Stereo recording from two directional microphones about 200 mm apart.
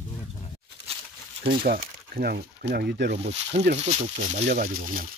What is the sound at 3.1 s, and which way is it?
Speech, 30° right (ahead or behind).